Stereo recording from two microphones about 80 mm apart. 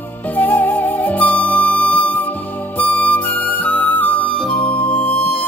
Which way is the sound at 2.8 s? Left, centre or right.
Left.